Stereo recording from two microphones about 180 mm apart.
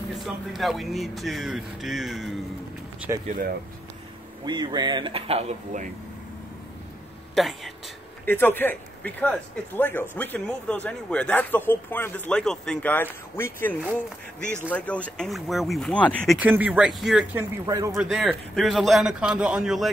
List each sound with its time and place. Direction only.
0.5 s speech: centre (ahead or behind)
3.1 s speech: 15° right (ahead or behind)
4.5 s speech: 25° right (ahead or behind); by 5.9 s 40° right (ahead or behind)
7.3 s speech: centre (ahead or behind)
8.3 s speech: 10° left (ahead or behind)
16.3 s speech: 10° right (ahead or behind)
17.9 s speech: centre (ahead or behind)